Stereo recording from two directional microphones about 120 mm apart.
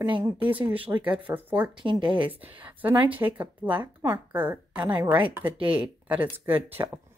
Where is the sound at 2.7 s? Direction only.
15° right (ahead or behind).